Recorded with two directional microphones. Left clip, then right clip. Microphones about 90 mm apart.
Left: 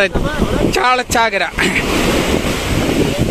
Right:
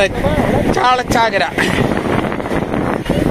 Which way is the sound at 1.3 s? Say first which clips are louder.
Even; 35° left (ahead or behind).